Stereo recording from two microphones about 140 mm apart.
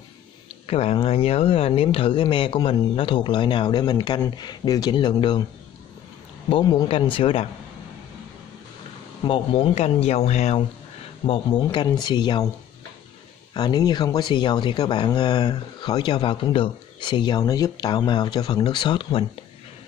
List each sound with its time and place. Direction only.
0.7 s speech: 45° left (ahead or behind)
6.5 s speech: 30° left (ahead or behind)
6.9 s speech: 40° left (ahead or behind)
9.2 s speech: 40° left (ahead or behind)
11.2 s speech: 40° left (ahead or behind)
13.5 s speech: 30° left (ahead or behind)